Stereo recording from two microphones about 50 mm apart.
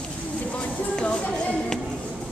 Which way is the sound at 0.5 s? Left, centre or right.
Left.